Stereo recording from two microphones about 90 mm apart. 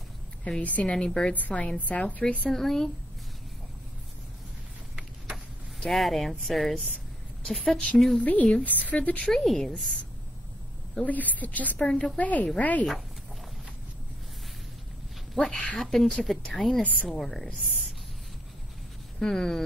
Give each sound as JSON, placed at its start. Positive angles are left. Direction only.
{"t": 0.4, "sound": "a woman's voice", "side_deg": 15}
{"t": 4.9, "sound": "a sound", "side_deg": 0}
{"t": 7.4, "sound": "a woman's voice", "side_deg": 5}
{"t": 8.2, "sound": "a woman's voice", "side_deg": 15}
{"t": 9.3, "sound": "a woman's voice", "side_deg": 5}
{"t": 11.1, "sound": "a woman's voice", "side_deg": 20}
{"t": 15.3, "sound": "a woman's voice", "side_deg": 5}
{"t": 17.2, "sound": "speech", "side_deg": 5}
{"t": 19.1, "sound": "a woman's voice", "side_deg": 5}